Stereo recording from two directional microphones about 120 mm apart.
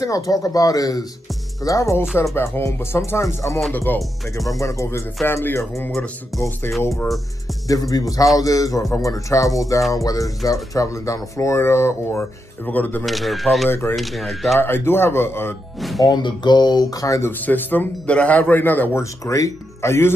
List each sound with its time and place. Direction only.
0.0 s a man's voice: 30° left (ahead or behind)
4.5 s speech: 25° left (ahead or behind)
13.0 s speech: centre (ahead or behind)
13.7 s speech: 20° left (ahead or behind)
13.9 s speech: centre (ahead or behind)
14.6 s speech: 20° left (ahead or behind)
15.8 s speech: centre (ahead or behind)
16.1 s speech: 40° left (ahead or behind)
17.3 s a man's voice: 15° left (ahead or behind)